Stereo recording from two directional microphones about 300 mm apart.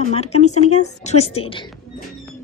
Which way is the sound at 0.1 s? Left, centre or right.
Left.